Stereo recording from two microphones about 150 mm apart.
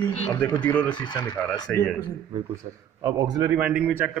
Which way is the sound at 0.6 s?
10° left (ahead or behind).